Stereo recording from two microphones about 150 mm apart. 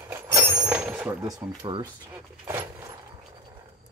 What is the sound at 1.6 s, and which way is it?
Speech, 35° right (ahead or behind).